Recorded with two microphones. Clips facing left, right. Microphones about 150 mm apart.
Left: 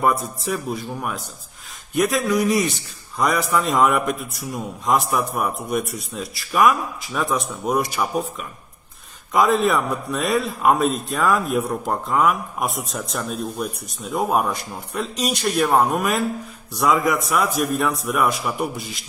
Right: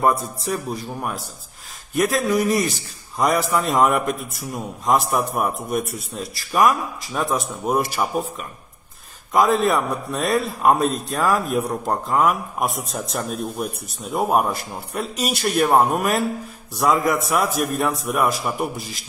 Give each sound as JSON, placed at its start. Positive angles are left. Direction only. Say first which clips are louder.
{"t": 0.0, "sound": "a man's voice", "louder": "right 1 dB", "side_deg": 0}